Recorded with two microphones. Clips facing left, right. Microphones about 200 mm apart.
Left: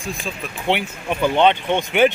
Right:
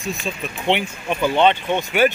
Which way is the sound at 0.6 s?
10° left (ahead or behind).